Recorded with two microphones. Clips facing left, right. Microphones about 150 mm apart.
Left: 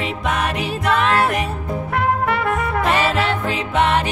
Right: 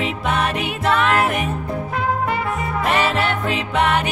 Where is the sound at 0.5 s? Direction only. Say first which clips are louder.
Even; 35° left (ahead or behind).